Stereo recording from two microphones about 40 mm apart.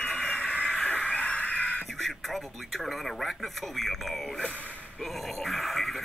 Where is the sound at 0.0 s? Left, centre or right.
Left.